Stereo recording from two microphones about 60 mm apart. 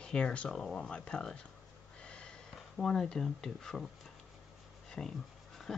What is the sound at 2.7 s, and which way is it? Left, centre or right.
Speech, centre.